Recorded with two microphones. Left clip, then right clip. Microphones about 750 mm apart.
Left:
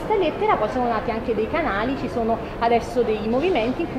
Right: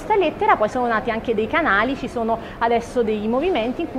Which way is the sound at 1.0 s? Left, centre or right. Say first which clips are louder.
Right 2 dB; right.